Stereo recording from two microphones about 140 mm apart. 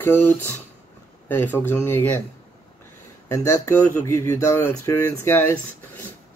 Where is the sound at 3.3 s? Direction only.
20° left (ahead or behind).